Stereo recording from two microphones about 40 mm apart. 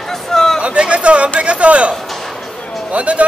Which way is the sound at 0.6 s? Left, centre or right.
Right.